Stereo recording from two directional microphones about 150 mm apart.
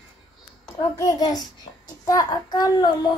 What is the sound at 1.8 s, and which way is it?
Child singing, 25° left (ahead or behind).